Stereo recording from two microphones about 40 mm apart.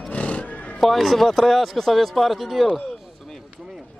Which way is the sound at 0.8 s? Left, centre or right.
Centre.